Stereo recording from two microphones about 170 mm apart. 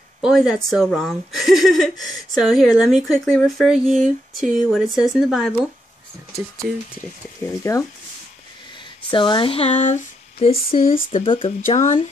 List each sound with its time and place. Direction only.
0.2 s speech: 5° right (ahead or behind)
7.7 s speech: 20° left (ahead or behind)
9.1 s speech: 30° left (ahead or behind)
11.6 s speech: 45° left (ahead or behind)